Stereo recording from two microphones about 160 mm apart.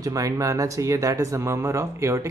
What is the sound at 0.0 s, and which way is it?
Speech, 20° right (ahead or behind).